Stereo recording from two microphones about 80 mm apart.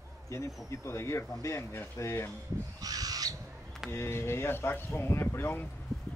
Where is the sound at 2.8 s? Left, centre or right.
Right.